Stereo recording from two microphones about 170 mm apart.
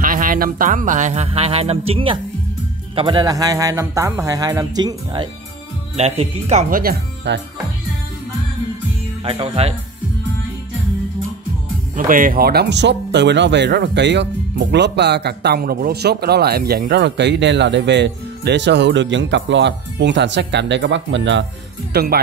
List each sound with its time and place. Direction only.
0.0 s speech: 55° right (ahead or behind); by 5.3 s 25° right (ahead or behind)
5.9 s speech: 35° right (ahead or behind)
6.7 s speech: 60° right (ahead or behind)
9.2 s speech: 35° right (ahead or behind)
11.9 s speech: 50° right (ahead or behind); by 21.5 s 90° right
21.9 s speech: 65° right (ahead or behind)